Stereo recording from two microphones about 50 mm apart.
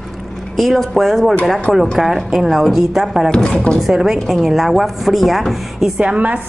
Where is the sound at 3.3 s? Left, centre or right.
Centre.